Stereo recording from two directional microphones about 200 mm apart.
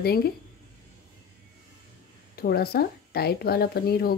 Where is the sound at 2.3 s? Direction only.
50° left (ahead or behind).